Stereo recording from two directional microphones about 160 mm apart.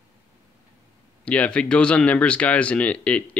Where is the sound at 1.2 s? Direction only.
10° left (ahead or behind).